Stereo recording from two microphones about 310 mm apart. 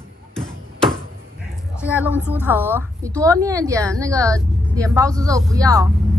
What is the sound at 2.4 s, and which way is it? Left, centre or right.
Speech, centre.